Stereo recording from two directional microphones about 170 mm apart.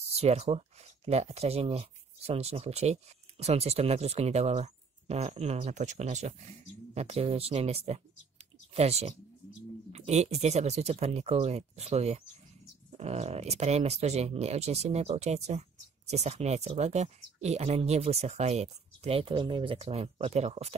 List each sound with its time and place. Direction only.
0.1 s speech: 40° right (ahead or behind)